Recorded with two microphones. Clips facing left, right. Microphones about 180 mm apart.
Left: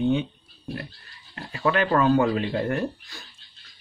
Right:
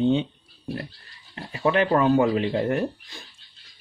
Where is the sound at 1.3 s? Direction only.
20° right (ahead or behind).